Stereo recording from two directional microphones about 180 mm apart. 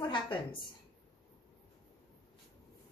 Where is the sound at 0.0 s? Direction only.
25° left (ahead or behind).